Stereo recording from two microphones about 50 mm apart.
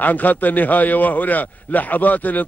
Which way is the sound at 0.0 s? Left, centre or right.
Left.